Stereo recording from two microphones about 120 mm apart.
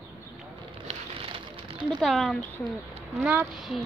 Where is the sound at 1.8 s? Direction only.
Centre (ahead or behind).